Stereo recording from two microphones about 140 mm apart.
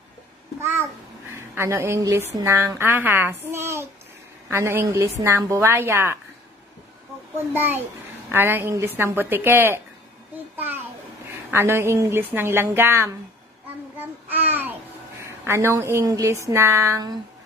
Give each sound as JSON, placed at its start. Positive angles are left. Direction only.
{"t": 0.6, "sound": "a child's voice", "side_deg": -15}
{"t": 8.3, "sound": "a woman's voice", "side_deg": -15}
{"t": 10.5, "sound": "a sound", "side_deg": -15}
{"t": 11.2, "sound": "a woman's voice", "side_deg": -20}
{"t": 14.3, "sound": "babbling", "side_deg": -15}